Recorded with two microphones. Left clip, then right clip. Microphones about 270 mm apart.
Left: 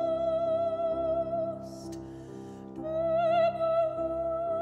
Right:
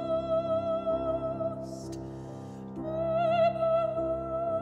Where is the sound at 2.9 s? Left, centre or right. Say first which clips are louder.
Left 1 dB; left.